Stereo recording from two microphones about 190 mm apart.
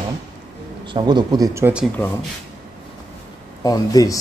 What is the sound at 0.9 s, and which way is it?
Speech, 20° right (ahead or behind).